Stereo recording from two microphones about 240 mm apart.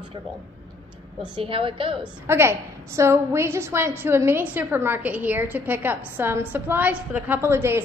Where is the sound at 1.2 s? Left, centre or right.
Right.